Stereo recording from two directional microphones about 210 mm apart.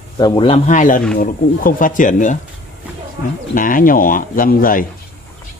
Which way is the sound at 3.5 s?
40° left (ahead or behind).